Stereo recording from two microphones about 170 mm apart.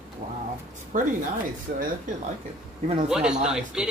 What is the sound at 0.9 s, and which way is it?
Speech, 50° right (ahead or behind).